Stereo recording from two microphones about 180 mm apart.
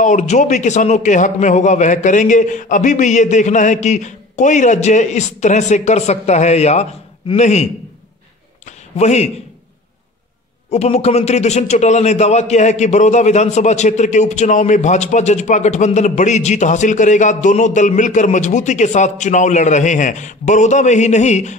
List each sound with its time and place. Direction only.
0.0 s a man's voice: 45° left (ahead or behind)
8.6 s a sound: 40° left (ahead or behind)
10.7 s a man's voice: 35° left (ahead or behind)